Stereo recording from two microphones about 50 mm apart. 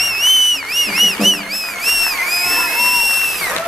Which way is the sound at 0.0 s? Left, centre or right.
Centre.